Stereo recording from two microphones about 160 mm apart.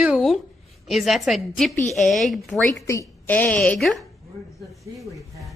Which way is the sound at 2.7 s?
20° left (ahead or behind).